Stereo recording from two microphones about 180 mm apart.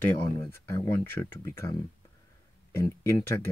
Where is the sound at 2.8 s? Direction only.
15° left (ahead or behind).